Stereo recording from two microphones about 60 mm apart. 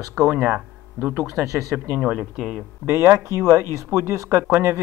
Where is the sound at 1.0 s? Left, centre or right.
Right.